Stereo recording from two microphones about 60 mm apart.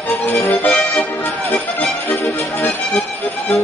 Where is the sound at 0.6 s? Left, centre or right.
Centre.